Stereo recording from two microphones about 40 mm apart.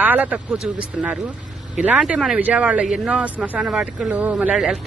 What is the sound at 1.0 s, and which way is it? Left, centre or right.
Speech, centre.